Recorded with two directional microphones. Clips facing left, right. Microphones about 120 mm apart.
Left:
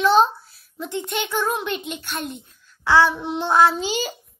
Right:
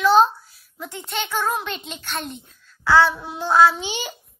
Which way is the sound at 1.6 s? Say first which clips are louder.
Left 4 dB; 15° left (ahead or behind).